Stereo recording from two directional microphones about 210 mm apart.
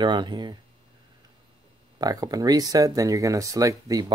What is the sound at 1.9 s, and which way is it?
Speech, 15° right (ahead or behind).